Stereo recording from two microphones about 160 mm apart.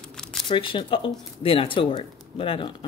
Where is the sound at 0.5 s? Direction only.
30° left (ahead or behind).